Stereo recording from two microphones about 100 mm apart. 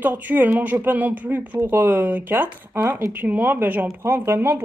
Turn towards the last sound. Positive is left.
turn(degrees=-25)  # may be behind; listen again after turning